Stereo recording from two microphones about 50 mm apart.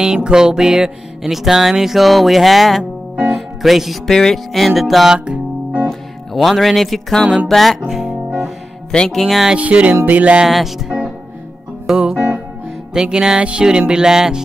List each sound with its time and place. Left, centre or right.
0.0 s music: centre
2.8 s music: right
3.3 s music: centre
4.1 s music: centre
5.1 s music: right
5.9 s speech: centre
7.4 s music: centre
7.9 s music: centre
8.9 s speech: centre
9.6 s music: right
10.4 s music: centre